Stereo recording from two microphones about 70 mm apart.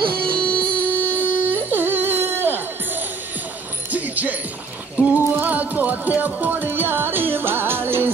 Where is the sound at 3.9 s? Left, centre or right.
Right.